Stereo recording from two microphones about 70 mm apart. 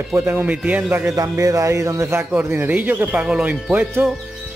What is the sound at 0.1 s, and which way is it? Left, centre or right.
Speech, right.